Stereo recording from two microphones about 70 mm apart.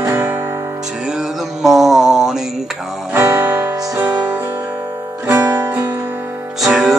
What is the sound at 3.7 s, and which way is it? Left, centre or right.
Music, right.